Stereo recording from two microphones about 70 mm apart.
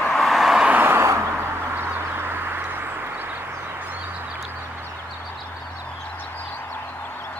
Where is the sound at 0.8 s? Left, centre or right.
Right.